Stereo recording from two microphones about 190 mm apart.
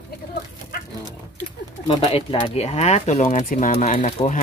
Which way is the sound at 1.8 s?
30° left (ahead or behind).